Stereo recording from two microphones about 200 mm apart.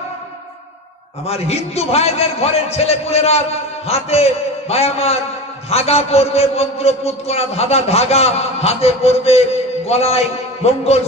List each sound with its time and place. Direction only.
1.2 s a man's voice: 30° left (ahead or behind)